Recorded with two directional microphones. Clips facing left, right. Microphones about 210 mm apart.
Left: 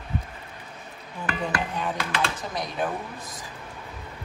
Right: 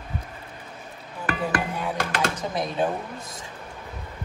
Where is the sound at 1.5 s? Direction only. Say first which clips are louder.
Right 2 dB; 50° right (ahead or behind).